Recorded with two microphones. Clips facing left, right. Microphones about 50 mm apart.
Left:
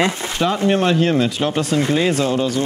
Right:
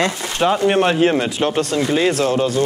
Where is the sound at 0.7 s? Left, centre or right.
Right.